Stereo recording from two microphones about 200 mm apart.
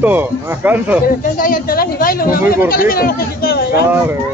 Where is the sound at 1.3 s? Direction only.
45° left (ahead or behind).